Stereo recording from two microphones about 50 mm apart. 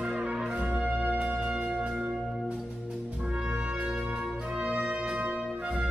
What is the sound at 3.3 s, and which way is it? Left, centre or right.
Music, right.